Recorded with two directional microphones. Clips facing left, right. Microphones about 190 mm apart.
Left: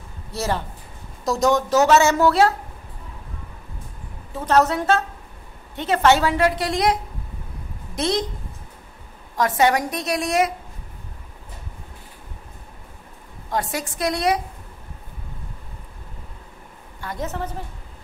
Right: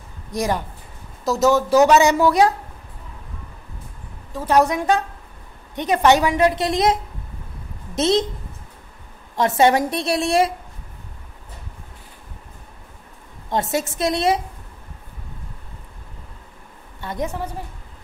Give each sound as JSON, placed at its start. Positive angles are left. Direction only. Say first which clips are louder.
{"t": 0.3, "sound": "a woman's voice", "louder": "right 3 dB", "side_deg": -15}
{"t": 1.2, "sound": "a woman's voice", "louder": "right 2 dB", "side_deg": -5}
{"t": 4.5, "sound": "a woman's voice", "louder": "right 1 dB", "side_deg": -10}
{"t": 9.4, "sound": "a woman's voice", "louder": "right 3 dB", "side_deg": -25}
{"t": 13.5, "sound": "a woman's voice", "louder": "right 4 dB", "side_deg": -25}
{"t": 17.0, "sound": "a woman's voice", "louder": "right 3 dB", "side_deg": -20}
{"t": 17.3, "sound": "a woman's voice", "louder": "even", "side_deg": -10}